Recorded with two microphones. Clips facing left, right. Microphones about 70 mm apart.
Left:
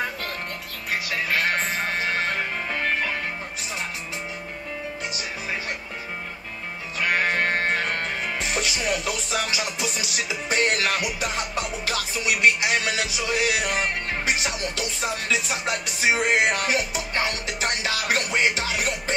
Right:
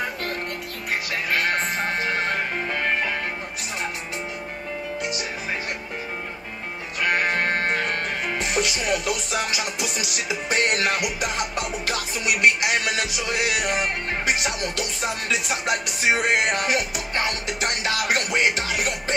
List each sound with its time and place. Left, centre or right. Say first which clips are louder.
1.3 s music: right 1 dB; right
7.0 s music: even; centre
8.4 s speech: right 4 dB; right
9.3 s music: right 1 dB; right